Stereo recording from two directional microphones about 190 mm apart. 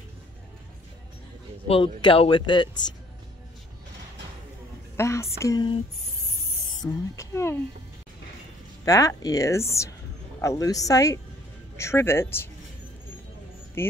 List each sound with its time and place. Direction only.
2.0 s speech: 25° left (ahead or behind)
4.9 s speech: 15° left (ahead or behind)
6.8 s speech: 15° left (ahead or behind)
8.8 s speech: 20° left (ahead or behind)
13.8 s speech: 10° left (ahead or behind)